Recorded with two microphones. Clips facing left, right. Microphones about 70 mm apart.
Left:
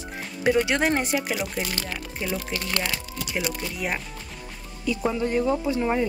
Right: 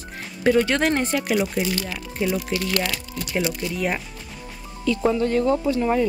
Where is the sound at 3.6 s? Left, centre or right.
Centre.